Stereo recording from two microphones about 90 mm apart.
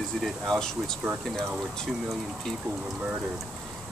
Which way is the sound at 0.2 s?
5° left (ahead or behind).